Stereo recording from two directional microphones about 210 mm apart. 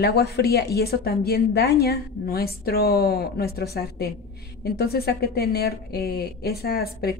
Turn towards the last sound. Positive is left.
turn(degrees=50)  # may be behind; listen again after turning